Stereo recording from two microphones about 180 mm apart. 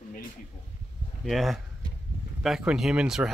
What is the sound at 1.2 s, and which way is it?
Speech, centre (ahead or behind).